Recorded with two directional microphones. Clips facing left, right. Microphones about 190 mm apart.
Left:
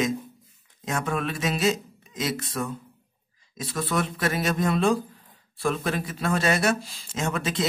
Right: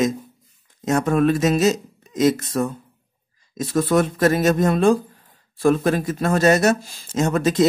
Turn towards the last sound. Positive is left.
turn(degrees=-40)  # may be behind; listen again after turning